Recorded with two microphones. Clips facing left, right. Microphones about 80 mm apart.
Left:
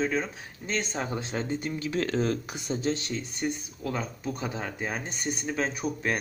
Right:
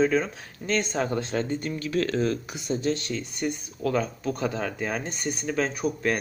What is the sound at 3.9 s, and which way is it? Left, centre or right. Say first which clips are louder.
Speech: right 6 dB; centre.